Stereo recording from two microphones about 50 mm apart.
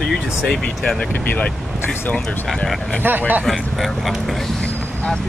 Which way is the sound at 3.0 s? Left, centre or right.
Right.